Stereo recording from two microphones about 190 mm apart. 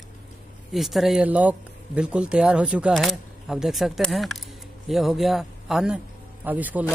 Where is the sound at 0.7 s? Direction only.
Centre (ahead or behind).